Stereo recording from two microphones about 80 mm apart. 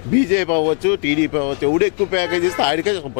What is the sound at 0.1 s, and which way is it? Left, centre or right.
Speech, centre.